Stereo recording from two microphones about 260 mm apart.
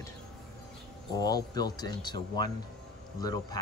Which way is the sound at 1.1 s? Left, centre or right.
Centre.